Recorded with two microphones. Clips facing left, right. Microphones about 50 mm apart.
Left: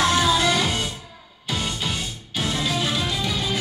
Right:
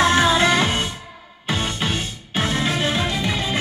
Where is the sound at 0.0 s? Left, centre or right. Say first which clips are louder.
Right 3 dB; right.